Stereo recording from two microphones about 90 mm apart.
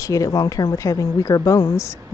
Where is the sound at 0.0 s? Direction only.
35° left (ahead or behind).